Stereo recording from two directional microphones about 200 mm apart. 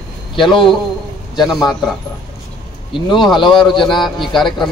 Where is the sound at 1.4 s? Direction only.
Centre (ahead or behind).